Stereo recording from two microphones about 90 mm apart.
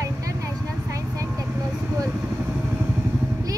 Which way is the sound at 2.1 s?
10° right (ahead or behind).